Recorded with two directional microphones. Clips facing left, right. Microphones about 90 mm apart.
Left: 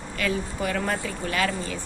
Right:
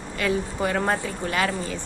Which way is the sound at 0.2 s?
25° right (ahead or behind).